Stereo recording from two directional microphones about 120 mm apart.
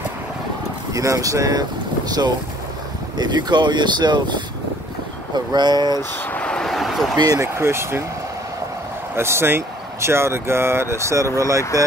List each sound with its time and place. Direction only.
0.9 s speech: 30° right (ahead or behind)
5.9 s a sound: 10° left (ahead or behind)
7.2 s speech: 30° right (ahead or behind)
9.1 s speech: 20° right (ahead or behind)